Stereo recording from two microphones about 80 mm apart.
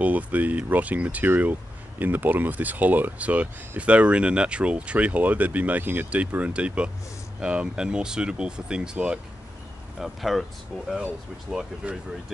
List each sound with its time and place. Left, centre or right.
0.0 s speech: centre
9.9 s speech: centre
11.5 s speech: centre